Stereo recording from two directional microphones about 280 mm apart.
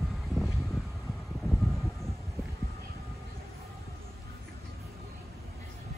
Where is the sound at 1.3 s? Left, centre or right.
Centre.